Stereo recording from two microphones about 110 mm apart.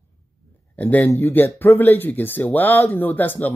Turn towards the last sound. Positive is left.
turn(degrees=15)  # may be behind; listen again after turning